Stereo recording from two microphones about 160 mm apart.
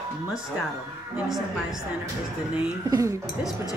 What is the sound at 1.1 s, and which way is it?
Speech, 5° right (ahead or behind).